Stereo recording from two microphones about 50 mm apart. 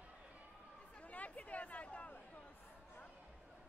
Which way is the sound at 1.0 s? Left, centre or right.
Left.